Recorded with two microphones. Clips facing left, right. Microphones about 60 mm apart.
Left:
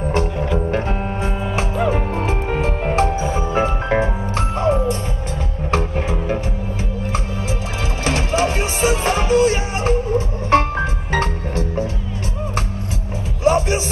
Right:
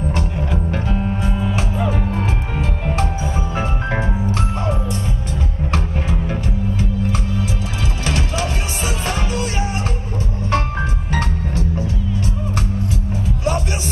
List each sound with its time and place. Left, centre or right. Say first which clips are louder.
0.1 s music: left 4 dB; left
8.0 s music: left 5 dB; left
13.4 s music: left 7 dB; left